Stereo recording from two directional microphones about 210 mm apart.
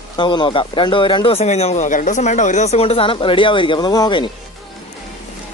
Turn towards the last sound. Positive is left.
turn(degrees=20)  # may be behind; listen again after turning